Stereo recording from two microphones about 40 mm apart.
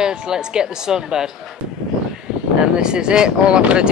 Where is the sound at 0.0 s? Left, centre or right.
Centre.